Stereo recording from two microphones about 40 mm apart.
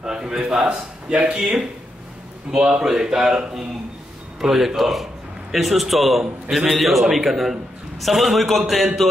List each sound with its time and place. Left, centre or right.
0.0 s a man's voice: centre
0.7 s a man's voice: right
2.5 s a man's voice: right; by 9.1 s centre